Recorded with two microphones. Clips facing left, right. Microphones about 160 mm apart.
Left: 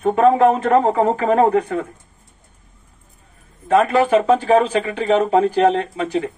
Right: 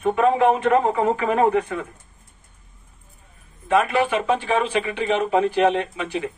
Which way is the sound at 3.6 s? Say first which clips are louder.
Left 4 dB; 40° left (ahead or behind).